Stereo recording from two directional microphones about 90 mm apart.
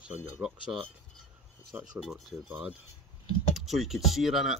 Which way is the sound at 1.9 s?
Centre (ahead or behind).